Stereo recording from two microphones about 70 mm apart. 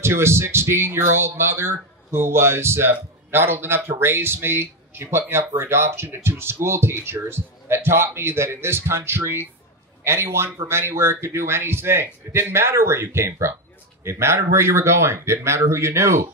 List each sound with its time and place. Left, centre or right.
0.0 s speech: right